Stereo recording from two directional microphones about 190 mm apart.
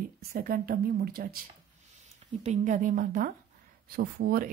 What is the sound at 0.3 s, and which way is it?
Speech, 50° right (ahead or behind).